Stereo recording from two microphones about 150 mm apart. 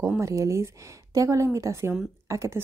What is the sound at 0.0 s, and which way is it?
A woman's voice, 20° right (ahead or behind).